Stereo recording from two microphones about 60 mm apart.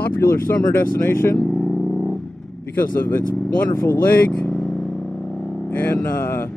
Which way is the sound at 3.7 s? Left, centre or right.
Left.